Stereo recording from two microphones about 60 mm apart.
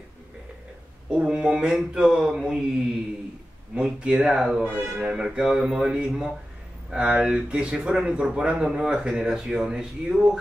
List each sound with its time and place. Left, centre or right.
1.1 s speech: centre
3.7 s speech: centre
4.6 s speech: right
5.1 s speech: centre